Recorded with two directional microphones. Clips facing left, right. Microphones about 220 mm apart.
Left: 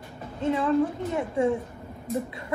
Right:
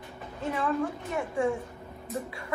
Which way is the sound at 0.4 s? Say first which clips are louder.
Left 6 dB; 15° left (ahead or behind).